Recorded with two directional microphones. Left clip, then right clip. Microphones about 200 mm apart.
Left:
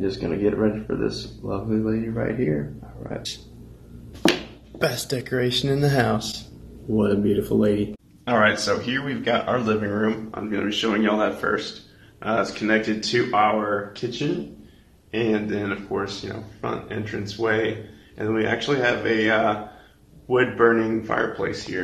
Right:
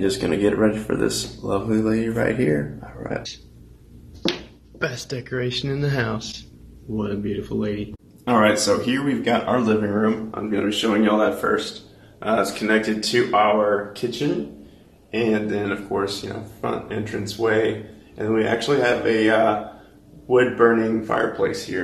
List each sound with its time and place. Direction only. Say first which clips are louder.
0.0 s speech: right 3 dB; 5° right (ahead or behind)
4.3 s speech: left 4 dB; 5° left (ahead or behind)
8.3 s speech: right 2 dB; centre (ahead or behind); by 13.5 s 25° left (ahead or behind)
15.0 s speech: right 2 dB; 15° left (ahead or behind)